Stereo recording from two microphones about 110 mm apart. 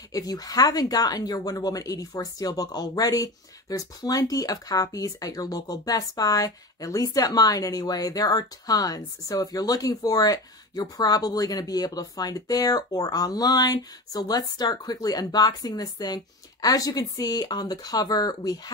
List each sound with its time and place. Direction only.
0.1 s speech: 35° left (ahead or behind)